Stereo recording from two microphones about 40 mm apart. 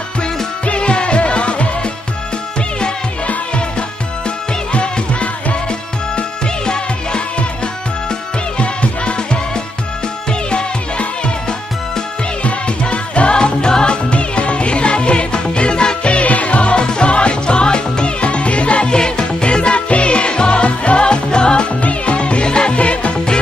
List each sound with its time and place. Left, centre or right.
0.7 s music: left
4.7 s music: left
8.5 s music: left
12.4 s music: left